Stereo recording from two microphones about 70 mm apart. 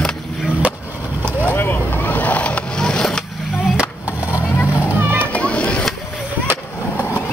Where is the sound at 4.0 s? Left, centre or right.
Right.